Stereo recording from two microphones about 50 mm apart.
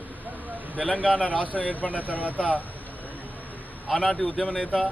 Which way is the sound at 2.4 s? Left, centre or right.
Left.